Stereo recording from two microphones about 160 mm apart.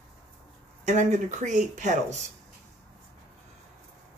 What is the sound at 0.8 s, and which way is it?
Speech, 50° right (ahead or behind).